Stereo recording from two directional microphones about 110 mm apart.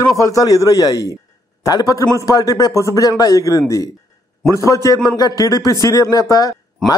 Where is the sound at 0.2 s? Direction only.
30° left (ahead or behind).